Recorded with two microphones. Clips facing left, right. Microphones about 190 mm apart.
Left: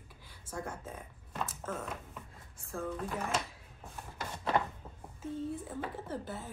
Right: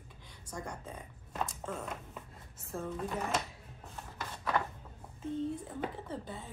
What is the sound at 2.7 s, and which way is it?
Speech, 25° right (ahead or behind).